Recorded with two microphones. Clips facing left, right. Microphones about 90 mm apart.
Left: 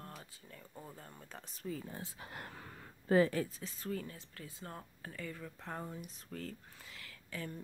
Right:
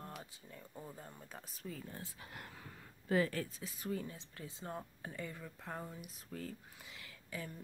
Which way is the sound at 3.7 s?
15° right (ahead or behind).